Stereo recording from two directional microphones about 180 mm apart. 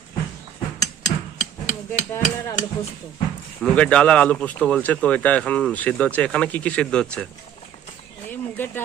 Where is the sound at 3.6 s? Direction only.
5° left (ahead or behind).